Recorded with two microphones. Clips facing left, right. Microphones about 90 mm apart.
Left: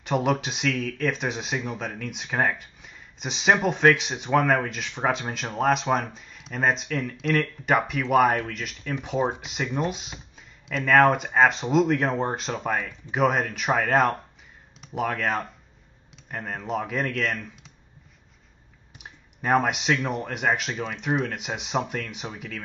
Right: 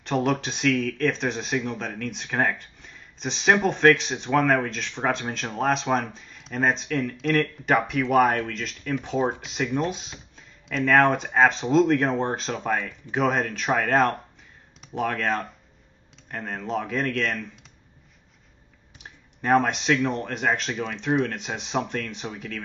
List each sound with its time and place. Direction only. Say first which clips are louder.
0.0 s speech: even; 5° left (ahead or behind)
19.4 s speech: right 1 dB; 5° left (ahead or behind)